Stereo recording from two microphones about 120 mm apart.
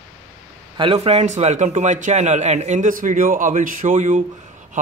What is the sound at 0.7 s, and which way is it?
A man's voice, 45° right (ahead or behind).